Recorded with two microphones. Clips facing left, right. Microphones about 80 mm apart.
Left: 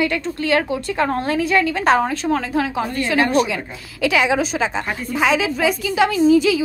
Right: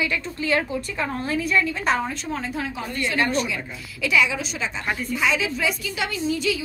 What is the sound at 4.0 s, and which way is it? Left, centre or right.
Speech, left.